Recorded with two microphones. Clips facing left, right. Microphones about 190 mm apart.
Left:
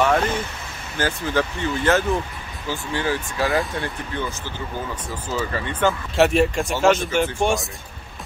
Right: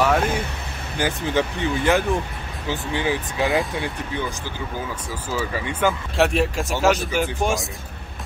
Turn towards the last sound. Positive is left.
turn(degrees=0)  # may be behind; listen again after turning